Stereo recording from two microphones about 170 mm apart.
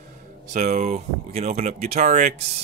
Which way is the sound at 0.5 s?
45° right (ahead or behind).